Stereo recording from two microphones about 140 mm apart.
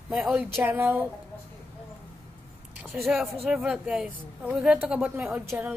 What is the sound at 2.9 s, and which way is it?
A woman's voice, centre (ahead or behind).